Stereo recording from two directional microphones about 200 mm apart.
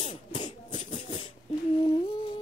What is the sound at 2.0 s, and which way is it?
Humming, 25° left (ahead or behind).